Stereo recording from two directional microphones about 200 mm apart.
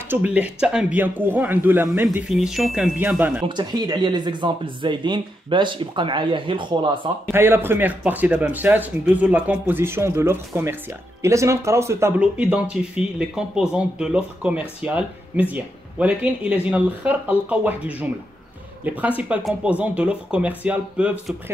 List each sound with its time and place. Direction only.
0.1 s speech: 5° right (ahead or behind)
3.4 s speech: 20° right (ahead or behind)
7.3 s speech: 10° right (ahead or behind)